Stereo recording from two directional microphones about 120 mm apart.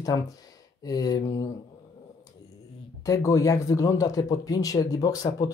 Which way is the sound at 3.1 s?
30° left (ahead or behind).